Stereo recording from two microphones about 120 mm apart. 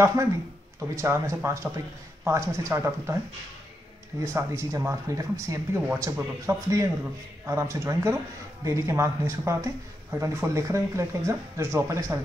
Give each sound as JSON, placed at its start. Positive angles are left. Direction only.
{"t": 0.0, "sound": "speech", "side_deg": -25}
{"t": 4.2, "sound": "speech", "side_deg": -25}